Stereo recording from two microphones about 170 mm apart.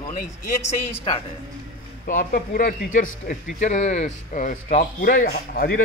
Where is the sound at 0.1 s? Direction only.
50° left (ahead or behind).